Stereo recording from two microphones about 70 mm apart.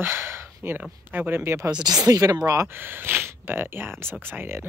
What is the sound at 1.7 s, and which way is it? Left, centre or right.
Speech, right.